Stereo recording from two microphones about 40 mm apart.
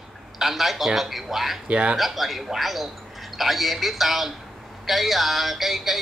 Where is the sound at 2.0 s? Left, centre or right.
Centre.